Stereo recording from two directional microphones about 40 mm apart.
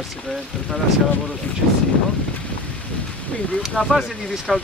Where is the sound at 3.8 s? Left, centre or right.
Centre.